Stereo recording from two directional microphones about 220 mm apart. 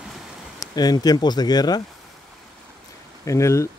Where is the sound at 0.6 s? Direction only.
20° left (ahead or behind).